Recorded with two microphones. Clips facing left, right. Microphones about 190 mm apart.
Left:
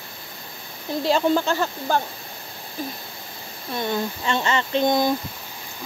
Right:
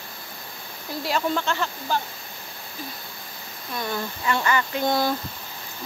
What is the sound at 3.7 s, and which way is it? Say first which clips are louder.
Speech: left 4 dB; 25° left (ahead or behind).